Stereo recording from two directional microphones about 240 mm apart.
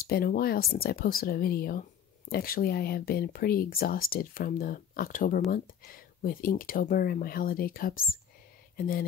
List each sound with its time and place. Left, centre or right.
0.0 s speech: left